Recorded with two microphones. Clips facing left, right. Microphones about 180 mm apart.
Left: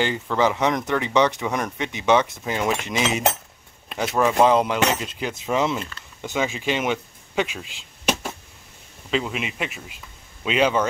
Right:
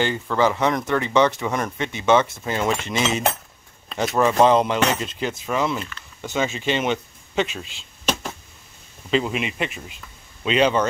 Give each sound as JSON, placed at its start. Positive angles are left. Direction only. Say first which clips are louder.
{"t": 0.0, "sound": "speech", "louder": "right 1 dB", "side_deg": 15}
{"t": 4.2, "sound": "speech", "louder": "right 1 dB", "side_deg": 5}
{"t": 5.5, "sound": "speech", "louder": "left 2 dB", "side_deg": 20}
{"t": 6.3, "sound": "speech", "louder": "right 1 dB", "side_deg": 15}
{"t": 9.1, "sound": "speech", "louder": "right 3 dB", "side_deg": 0}